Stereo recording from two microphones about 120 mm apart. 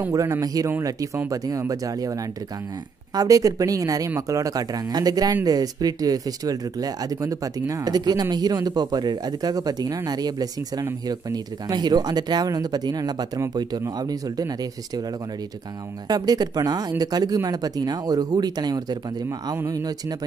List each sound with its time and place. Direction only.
0.1 s speech: 30° right (ahead or behind)
3.2 s speech: 30° right (ahead or behind)
16.1 s speech: 35° right (ahead or behind)
19.5 s speech: 20° right (ahead or behind)